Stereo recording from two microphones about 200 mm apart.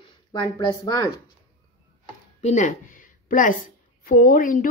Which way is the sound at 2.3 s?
35° left (ahead or behind).